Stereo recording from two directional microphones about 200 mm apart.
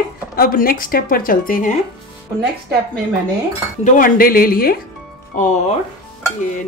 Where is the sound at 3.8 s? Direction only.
40° left (ahead or behind).